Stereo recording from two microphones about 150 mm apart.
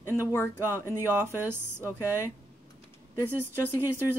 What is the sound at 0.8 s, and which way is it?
Speech, 15° right (ahead or behind).